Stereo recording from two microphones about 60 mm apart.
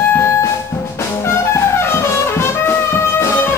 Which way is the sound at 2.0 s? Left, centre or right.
Left.